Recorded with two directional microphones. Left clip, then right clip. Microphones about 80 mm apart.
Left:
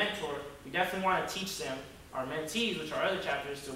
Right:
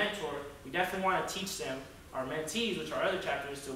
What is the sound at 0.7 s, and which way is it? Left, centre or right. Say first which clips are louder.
Speech: left 1 dB; centre.